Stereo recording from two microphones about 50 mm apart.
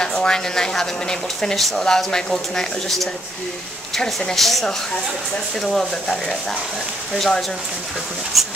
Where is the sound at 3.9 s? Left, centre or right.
Centre.